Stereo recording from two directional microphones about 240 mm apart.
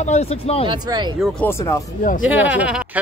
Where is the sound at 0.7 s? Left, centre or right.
Centre.